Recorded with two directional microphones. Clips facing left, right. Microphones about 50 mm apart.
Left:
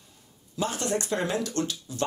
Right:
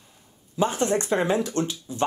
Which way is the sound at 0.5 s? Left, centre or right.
Right.